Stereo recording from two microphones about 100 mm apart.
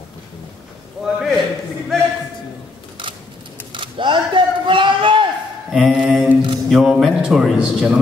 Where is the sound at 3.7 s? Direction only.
55° right (ahead or behind).